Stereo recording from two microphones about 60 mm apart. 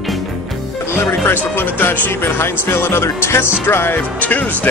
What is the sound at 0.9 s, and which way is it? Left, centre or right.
Speech, left.